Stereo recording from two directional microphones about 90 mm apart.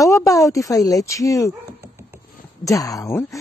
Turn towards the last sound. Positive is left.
turn(degrees=40)  # may be behind; listen again after turning